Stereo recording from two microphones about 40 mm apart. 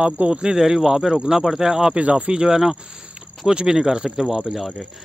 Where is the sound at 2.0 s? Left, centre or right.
Right.